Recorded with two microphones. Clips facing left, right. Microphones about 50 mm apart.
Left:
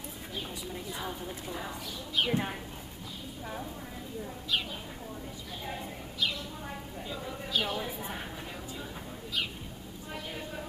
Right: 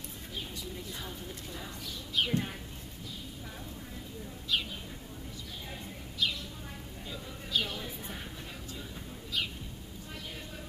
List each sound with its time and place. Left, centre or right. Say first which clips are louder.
0.7 s a woman's voice: left 4 dB; centre
7.5 s speech: left 2 dB; centre